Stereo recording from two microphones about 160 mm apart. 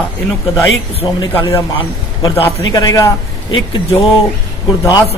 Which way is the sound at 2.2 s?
30° left (ahead or behind).